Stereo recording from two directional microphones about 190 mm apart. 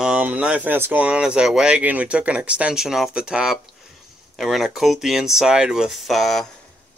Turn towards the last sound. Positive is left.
turn(degrees=0)  # may be behind; listen again after turning